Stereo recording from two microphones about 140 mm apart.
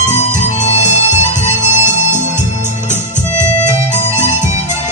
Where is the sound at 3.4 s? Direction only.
20° right (ahead or behind).